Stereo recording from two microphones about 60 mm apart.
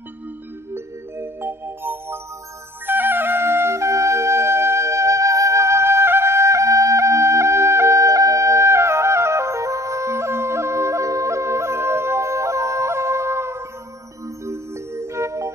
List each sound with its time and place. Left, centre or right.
0.7 s music: right
1.4 s music: right